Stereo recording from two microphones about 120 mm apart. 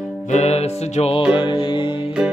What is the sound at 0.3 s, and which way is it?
Music, 65° left (ahead or behind).